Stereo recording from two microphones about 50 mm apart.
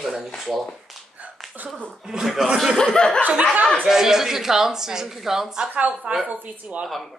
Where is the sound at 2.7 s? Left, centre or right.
Centre.